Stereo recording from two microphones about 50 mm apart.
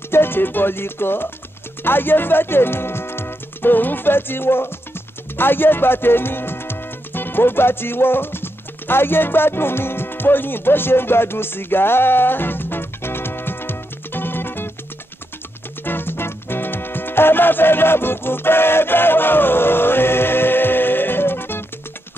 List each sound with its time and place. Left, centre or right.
0.1 s speech: left
5.3 s music: left
15.8 s music: left